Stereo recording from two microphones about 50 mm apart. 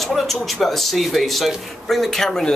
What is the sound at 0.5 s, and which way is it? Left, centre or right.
Speech, centre.